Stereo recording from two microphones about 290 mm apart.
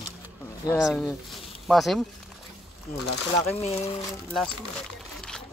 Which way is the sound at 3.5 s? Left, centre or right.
Left.